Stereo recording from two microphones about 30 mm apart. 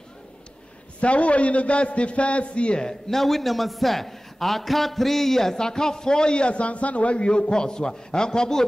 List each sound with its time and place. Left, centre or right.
1.0 s a man's voice: left
2.8 s a man's voice: centre
3.2 s a man's voice: centre